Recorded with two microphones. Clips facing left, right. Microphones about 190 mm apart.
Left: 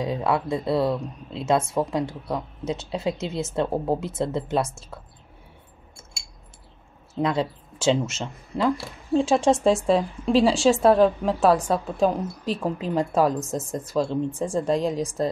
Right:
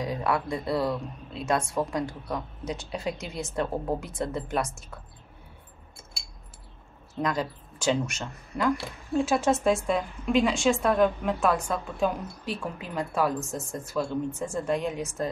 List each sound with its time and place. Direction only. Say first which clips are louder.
0.0 s speech: left 4 dB; 25° left (ahead or behind)
7.2 s a woman's voice: left 5 dB; 25° left (ahead or behind)
13.4 s speech: left 5 dB; 20° left (ahead or behind)
13.9 s a woman's voice: left 4 dB; 30° left (ahead or behind)